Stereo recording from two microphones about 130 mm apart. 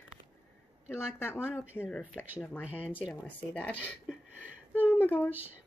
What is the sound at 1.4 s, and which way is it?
Speech, 10° right (ahead or behind).